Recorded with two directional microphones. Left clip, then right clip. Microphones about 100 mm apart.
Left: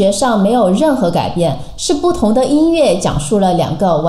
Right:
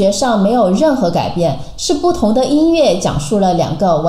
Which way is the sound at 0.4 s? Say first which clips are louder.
Even; 20° left (ahead or behind).